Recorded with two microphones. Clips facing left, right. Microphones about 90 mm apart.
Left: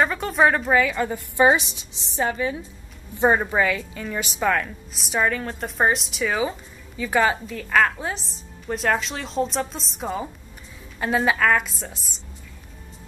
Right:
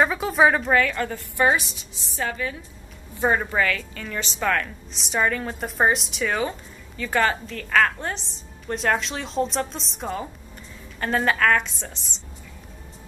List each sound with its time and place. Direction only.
0.0 s a woman's voice: centre (ahead or behind)